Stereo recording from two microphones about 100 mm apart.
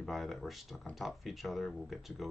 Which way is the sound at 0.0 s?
Centre (ahead or behind).